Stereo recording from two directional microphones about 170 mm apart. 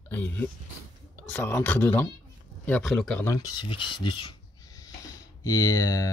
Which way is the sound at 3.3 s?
25° left (ahead or behind).